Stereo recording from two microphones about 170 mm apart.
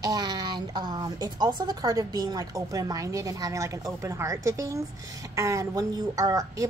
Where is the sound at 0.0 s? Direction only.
25° right (ahead or behind).